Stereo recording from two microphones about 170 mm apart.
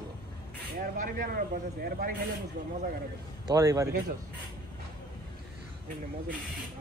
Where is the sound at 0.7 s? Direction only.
55° right (ahead or behind).